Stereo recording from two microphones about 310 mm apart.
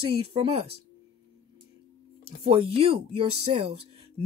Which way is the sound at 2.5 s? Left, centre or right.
Centre.